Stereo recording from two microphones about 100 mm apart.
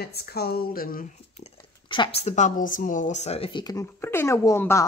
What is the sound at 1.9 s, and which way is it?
Speech, 65° left (ahead or behind).